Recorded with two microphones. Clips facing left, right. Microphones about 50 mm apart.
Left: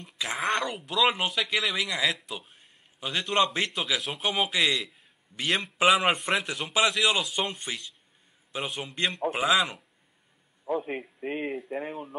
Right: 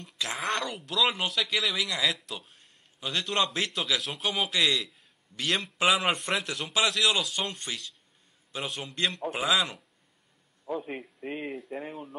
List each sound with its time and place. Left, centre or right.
0.0 s a man's voice: centre